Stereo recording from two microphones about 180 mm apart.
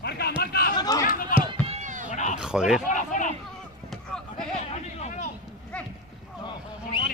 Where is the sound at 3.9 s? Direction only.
Centre (ahead or behind).